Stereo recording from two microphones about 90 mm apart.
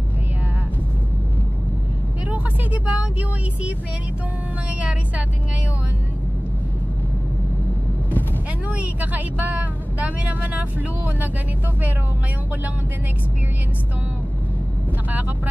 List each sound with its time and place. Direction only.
2.3 s vehicle: 15° right (ahead or behind)
8.6 s speech: 15° right (ahead or behind)